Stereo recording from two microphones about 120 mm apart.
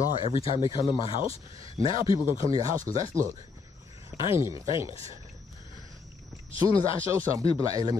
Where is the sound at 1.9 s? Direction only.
45° left (ahead or behind).